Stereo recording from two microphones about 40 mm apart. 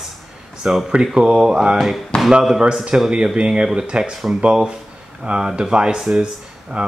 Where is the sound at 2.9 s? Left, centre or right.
Right.